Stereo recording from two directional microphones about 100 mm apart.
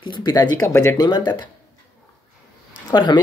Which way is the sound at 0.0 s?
50° left (ahead or behind).